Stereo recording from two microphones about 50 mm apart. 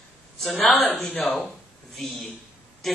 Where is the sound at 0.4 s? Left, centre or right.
Centre.